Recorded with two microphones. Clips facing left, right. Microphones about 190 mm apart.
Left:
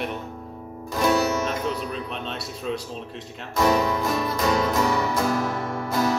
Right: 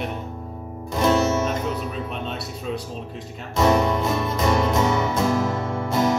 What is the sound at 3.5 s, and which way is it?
Speech, 25° right (ahead or behind).